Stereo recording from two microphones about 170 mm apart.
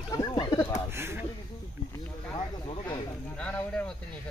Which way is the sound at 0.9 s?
15° right (ahead or behind).